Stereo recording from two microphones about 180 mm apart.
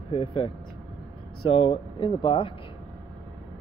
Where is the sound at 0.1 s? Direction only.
30° left (ahead or behind).